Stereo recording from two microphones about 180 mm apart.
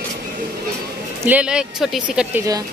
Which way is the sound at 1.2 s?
5° right (ahead or behind).